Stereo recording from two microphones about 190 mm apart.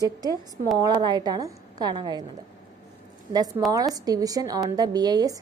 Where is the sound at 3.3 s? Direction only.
20° right (ahead or behind).